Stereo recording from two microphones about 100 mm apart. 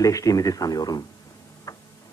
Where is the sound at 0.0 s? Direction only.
35° left (ahead or behind).